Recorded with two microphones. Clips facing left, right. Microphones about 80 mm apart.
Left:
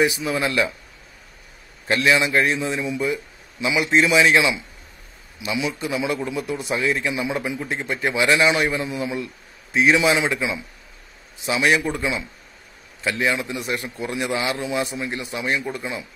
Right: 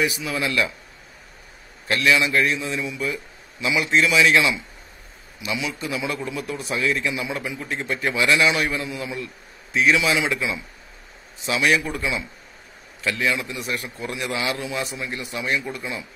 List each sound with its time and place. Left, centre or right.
0.0 s a man's voice: left
1.9 s a man's voice: left